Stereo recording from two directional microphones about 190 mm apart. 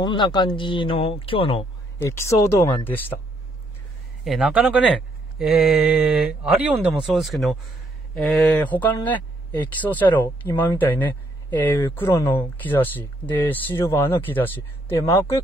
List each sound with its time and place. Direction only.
0.0 s speech: 25° left (ahead or behind)
2.0 s speech: 15° left (ahead or behind)
4.2 s speech: centre (ahead or behind); by 15.4 s 15° left (ahead or behind)